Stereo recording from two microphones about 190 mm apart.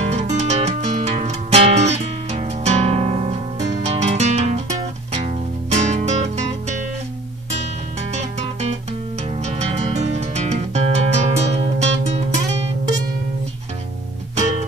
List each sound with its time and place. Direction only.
0.0 s music: 35° right (ahead or behind)
8.1 s music: 35° right (ahead or behind)